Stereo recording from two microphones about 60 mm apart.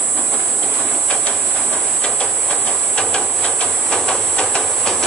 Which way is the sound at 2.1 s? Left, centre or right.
Centre.